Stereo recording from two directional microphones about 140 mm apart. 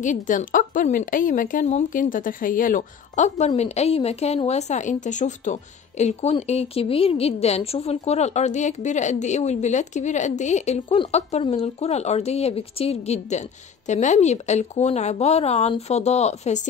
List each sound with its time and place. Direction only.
0.0 s a woman's voice: 65° left (ahead or behind)